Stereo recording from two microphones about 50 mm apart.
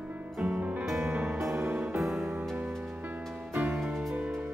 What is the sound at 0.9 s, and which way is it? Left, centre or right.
Music, right.